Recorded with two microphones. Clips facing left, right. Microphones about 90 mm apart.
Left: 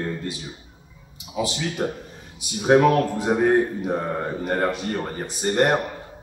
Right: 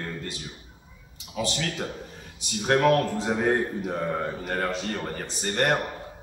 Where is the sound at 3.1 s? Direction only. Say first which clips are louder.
Left 5 dB; 15° left (ahead or behind).